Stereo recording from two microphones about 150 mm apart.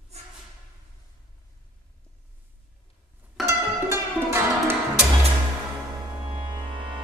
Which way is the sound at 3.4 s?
15° right (ahead or behind).